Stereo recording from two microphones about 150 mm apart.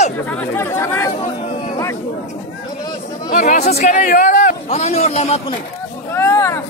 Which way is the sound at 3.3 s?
55° left (ahead or behind).